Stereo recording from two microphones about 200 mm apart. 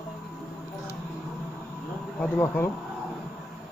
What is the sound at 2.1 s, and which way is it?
Speech, 10° left (ahead or behind).